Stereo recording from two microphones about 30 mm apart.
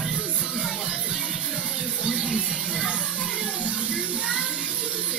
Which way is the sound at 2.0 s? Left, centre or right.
Right.